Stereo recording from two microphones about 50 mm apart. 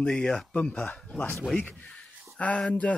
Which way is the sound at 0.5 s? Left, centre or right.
Left.